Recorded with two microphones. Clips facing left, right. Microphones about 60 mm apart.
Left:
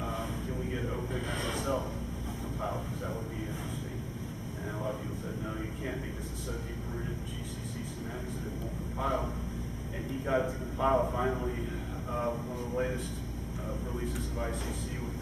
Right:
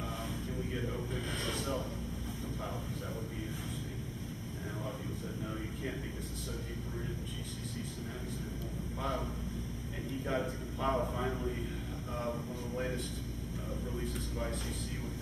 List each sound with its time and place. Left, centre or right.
0.0 s a sound: centre
9.0 s speech: centre
10.3 s a man's voice: centre